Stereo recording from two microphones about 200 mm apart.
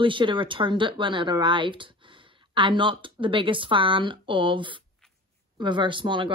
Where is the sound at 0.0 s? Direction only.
25° right (ahead or behind).